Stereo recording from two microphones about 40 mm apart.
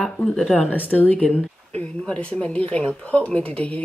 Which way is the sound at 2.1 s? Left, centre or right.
Left.